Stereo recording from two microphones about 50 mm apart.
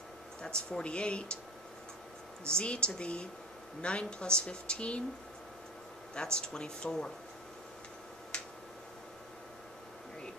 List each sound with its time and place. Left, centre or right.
0.4 s a woman's voice: centre
2.4 s a woman's voice: centre
6.1 s speech: centre
8.3 s finger snapping: left